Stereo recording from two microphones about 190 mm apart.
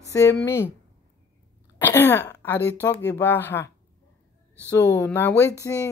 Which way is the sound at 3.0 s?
10° left (ahead or behind).